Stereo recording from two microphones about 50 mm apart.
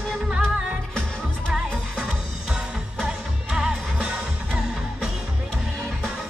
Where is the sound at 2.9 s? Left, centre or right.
Right.